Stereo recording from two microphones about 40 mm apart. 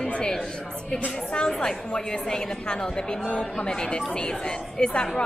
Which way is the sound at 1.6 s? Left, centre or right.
Centre.